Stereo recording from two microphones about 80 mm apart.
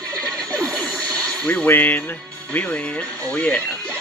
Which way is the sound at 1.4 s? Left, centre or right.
Centre.